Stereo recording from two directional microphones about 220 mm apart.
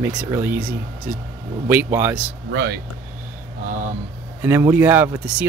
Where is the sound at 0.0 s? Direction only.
10° right (ahead or behind).